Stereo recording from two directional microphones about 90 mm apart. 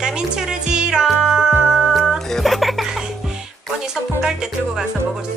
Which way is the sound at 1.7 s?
5° right (ahead or behind).